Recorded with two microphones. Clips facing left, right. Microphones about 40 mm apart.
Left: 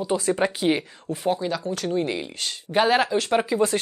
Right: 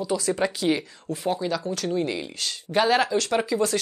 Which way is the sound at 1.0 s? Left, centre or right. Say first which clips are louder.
Left 3 dB; centre.